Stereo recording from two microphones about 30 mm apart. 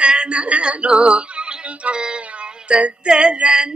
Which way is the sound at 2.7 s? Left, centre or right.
Right.